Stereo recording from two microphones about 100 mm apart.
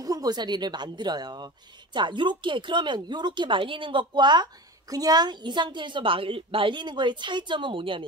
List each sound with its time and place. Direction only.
0.0 s speech: 40° right (ahead or behind); by 8.0 s 60° right (ahead or behind)